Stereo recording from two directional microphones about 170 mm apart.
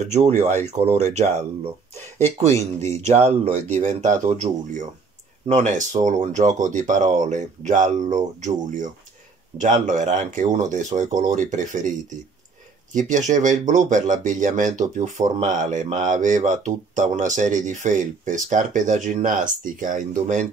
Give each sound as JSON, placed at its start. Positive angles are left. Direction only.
{"t": 0.1, "sound": "speech", "side_deg": -40}
{"t": 13.3, "sound": "speech", "side_deg": -45}